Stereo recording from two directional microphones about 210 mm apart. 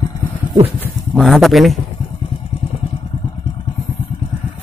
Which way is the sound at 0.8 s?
5° left (ahead or behind).